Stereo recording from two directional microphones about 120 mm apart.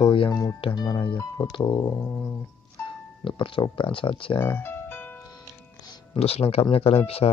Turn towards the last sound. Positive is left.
turn(degrees=55)  # may be behind; listen again after turning